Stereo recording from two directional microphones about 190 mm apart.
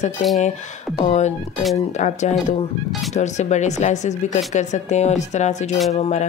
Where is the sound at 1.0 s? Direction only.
35° left (ahead or behind).